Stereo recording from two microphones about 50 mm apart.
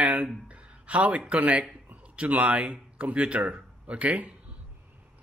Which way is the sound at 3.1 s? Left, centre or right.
Right.